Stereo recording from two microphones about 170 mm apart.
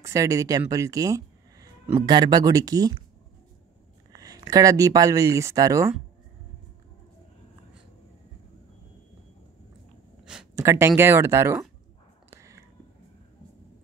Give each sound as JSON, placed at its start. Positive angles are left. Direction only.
{"t": 0.0, "sound": "speech", "side_deg": -20}
{"t": 4.1, "sound": "speech", "side_deg": -20}
{"t": 10.5, "sound": "speech", "side_deg": -15}
{"t": 12.3, "sound": "whispering", "side_deg": -15}